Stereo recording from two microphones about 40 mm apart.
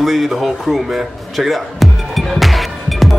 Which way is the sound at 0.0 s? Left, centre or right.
Centre.